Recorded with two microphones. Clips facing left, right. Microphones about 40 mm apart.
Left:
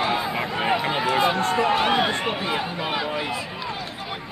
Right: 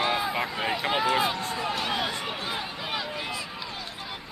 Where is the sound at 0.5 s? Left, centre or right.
Left.